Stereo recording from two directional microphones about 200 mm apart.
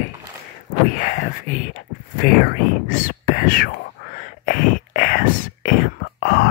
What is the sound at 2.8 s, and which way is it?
Speech, 45° left (ahead or behind).